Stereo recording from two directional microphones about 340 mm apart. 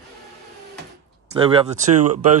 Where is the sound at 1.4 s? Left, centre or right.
Centre.